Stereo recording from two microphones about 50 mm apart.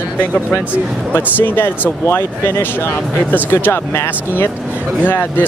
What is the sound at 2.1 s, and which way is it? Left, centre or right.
Speech, left.